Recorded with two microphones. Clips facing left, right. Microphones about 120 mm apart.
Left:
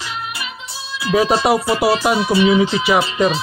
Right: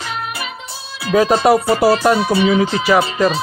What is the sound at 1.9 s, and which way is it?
Music, 15° left (ahead or behind).